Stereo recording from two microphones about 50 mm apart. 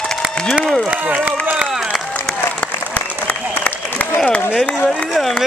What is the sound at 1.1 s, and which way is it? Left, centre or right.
Run, right.